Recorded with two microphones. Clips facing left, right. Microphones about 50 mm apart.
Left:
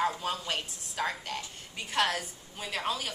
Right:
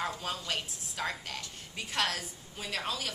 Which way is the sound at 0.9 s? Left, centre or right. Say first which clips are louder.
Left 3 dB; centre.